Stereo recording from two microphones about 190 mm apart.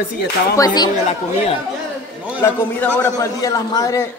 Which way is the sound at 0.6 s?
20° left (ahead or behind).